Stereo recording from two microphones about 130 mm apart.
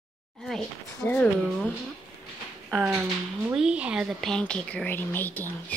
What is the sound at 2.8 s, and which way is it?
Speech, 10° right (ahead or behind).